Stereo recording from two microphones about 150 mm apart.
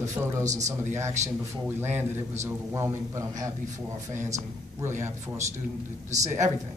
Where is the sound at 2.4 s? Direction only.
20° right (ahead or behind).